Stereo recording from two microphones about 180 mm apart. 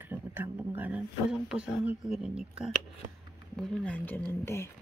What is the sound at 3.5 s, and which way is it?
Speech, 5° left (ahead or behind).